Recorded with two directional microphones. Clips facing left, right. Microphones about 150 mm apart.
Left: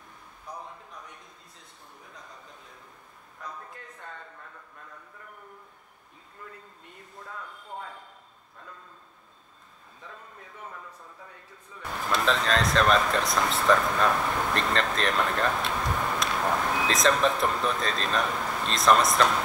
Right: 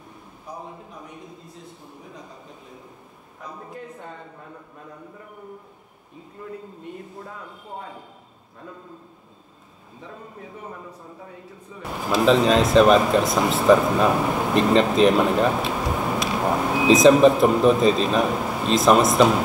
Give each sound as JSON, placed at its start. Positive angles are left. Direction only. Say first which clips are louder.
{"t": 3.3, "sound": "a man's voice", "louder": "right 5 dB", "side_deg": -15}
{"t": 11.8, "sound": "speech", "louder": "right 7 dB", "side_deg": -10}
{"t": 14.1, "sound": "a man's voice", "louder": "right 7 dB", "side_deg": -15}
{"t": 15.9, "sound": "a sound", "louder": "right 5 dB", "side_deg": -15}
{"t": 16.3, "sound": "speech", "louder": "right 5 dB", "side_deg": -20}
{"t": 18.2, "sound": "a sound", "louder": "right 7 dB", "side_deg": -20}
{"t": 18.6, "sound": "speech", "louder": "right 6 dB", "side_deg": -5}